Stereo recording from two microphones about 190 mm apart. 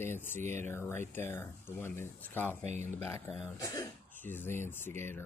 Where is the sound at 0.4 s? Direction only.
40° right (ahead or behind).